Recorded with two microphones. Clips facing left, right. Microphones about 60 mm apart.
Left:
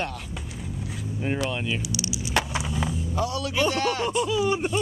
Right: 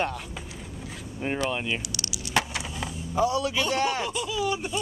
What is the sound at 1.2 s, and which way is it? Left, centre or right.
Speech, centre.